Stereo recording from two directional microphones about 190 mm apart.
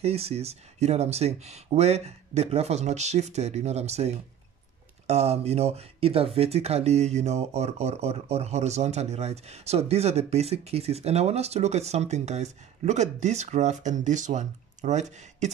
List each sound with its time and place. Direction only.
0.0 s speech: 30° right (ahead or behind)